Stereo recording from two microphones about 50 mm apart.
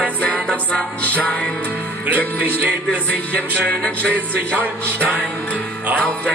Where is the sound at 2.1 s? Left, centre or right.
Right.